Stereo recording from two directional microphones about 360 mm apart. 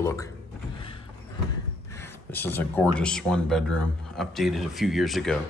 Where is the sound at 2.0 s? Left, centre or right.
Centre.